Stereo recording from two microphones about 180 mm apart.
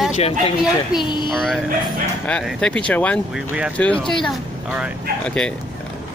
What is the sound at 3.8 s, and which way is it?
Speech, 5° left (ahead or behind).